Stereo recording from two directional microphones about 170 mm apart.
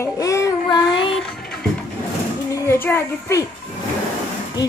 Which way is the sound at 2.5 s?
15° left (ahead or behind).